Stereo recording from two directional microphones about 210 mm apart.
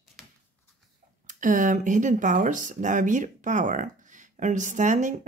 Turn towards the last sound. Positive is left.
turn(degrees=-35)  # may be behind; listen again after turning